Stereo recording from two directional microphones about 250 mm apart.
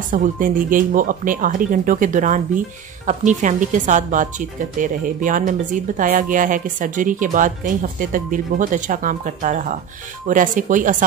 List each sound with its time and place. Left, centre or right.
0.1 s a woman's voice: right